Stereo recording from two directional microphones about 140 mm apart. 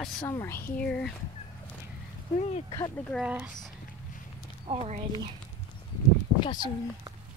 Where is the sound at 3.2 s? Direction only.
10° right (ahead or behind).